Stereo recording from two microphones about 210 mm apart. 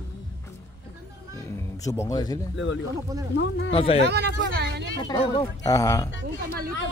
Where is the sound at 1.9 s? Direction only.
15° left (ahead or behind).